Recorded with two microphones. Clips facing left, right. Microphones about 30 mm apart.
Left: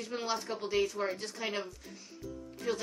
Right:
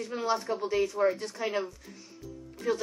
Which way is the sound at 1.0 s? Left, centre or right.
Centre.